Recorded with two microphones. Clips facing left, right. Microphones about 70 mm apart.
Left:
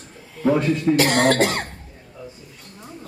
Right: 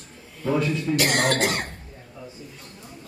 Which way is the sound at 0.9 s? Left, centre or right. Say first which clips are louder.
Left 5 dB; left.